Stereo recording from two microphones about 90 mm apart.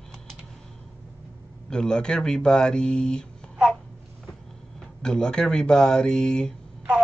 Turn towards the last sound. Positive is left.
turn(degrees=10)  # may be behind; listen again after turning